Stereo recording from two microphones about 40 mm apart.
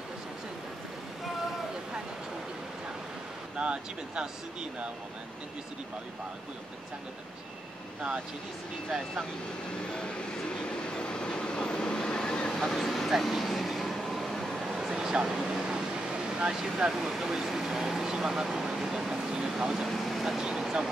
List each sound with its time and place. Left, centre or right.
3.5 s speech: right
9.7 s train: left
12.6 s speech: centre
13.2 s vehicle: centre
14.8 s a sound: centre
15.2 s vehicle: centre
16.5 s speech: centre
20.3 s speech: centre